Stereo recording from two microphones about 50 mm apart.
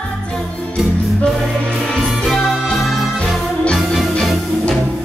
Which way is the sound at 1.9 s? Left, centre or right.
Centre.